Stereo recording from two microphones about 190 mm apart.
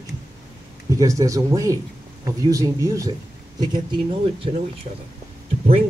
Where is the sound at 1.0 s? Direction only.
15° right (ahead or behind).